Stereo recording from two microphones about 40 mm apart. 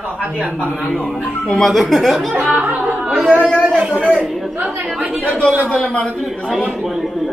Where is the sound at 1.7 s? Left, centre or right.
Centre.